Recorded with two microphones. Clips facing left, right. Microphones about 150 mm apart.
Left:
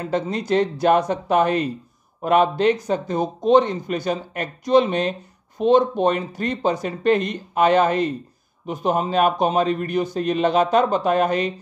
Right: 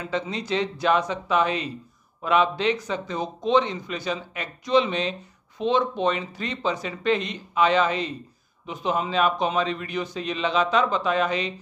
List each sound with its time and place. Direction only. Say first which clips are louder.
0.0 s speech: left 5 dB; 50° left (ahead or behind)